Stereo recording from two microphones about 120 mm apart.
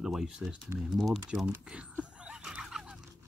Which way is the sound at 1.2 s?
5° right (ahead or behind).